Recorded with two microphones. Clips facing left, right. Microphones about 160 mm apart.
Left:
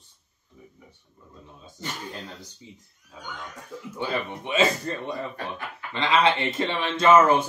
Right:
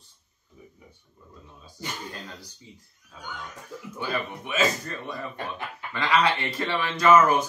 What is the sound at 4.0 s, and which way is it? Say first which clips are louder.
Speech: left 2 dB; 25° left (ahead or behind).